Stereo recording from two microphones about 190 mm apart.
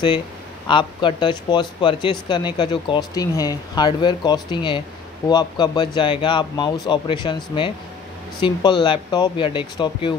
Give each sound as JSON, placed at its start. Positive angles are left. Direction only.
{"t": 0.7, "sound": "speech", "side_deg": 25}